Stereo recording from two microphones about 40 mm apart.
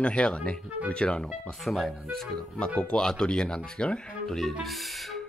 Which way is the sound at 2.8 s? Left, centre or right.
Left.